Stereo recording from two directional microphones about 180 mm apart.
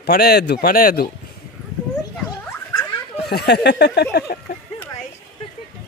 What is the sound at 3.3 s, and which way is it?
Speech, 65° left (ahead or behind).